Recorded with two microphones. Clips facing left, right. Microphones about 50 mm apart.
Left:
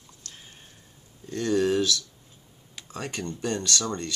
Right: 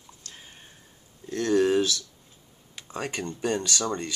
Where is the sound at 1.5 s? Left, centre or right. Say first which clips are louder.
Right 2 dB; centre.